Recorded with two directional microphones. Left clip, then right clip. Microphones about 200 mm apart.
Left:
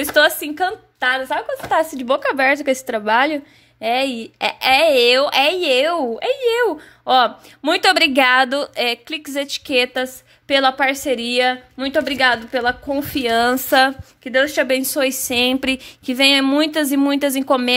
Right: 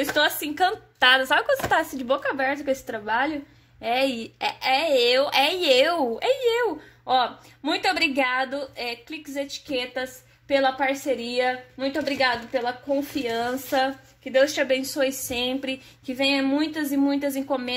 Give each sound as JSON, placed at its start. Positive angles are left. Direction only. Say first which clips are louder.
{"t": 0.0, "sound": "a woman's voice", "louder": "left 8 dB", "side_deg": 30}
{"t": 0.6, "sound": "a woman's voice", "louder": "left 1 dB", "side_deg": 10}
{"t": 1.8, "sound": "a woman's voice", "louder": "left 6 dB", "side_deg": 20}
{"t": 10.5, "sound": "a woman's voice", "louder": "left 6 dB", "side_deg": 40}